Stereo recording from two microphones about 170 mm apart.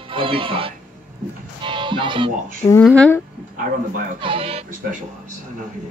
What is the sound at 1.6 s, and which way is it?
Speech, 30° right (ahead or behind).